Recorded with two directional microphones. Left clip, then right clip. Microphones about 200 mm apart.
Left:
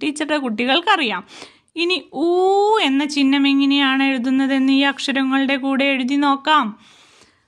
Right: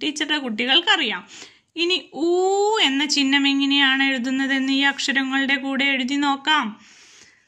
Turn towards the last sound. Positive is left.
turn(degrees=55)  # may be behind; listen again after turning